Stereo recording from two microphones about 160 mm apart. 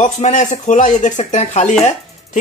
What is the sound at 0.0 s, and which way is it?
Speech, 50° left (ahead or behind).